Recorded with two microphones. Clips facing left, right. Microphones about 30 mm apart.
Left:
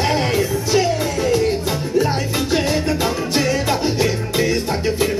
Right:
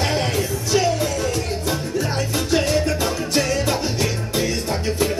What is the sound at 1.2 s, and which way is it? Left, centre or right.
Music, centre.